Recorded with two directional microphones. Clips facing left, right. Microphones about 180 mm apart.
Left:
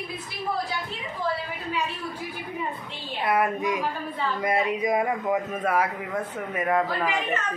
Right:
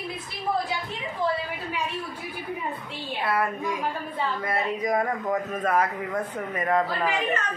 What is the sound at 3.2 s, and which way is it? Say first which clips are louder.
A man's voice: left 3 dB; 20° left (ahead or behind).